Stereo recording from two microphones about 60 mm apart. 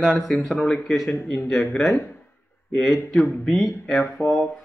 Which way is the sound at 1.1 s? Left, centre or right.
Left.